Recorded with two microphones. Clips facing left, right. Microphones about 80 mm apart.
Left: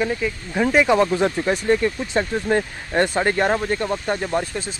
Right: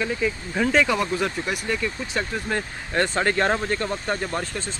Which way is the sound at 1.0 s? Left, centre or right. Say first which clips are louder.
Left 6 dB; left.